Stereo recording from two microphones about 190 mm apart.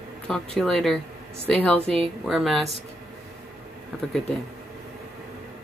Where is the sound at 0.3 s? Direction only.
Centre (ahead or behind).